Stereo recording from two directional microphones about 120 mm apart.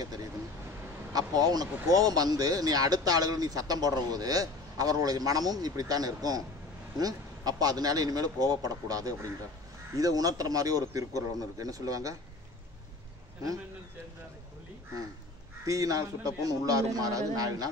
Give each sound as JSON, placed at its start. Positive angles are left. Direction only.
{"t": 0.0, "sound": "vehicle", "side_deg": -30}
{"t": 1.1, "sound": "speech", "side_deg": -30}
{"t": 15.6, "sound": "speech", "side_deg": -30}